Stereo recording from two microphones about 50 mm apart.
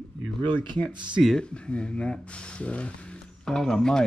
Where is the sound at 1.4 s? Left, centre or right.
Centre.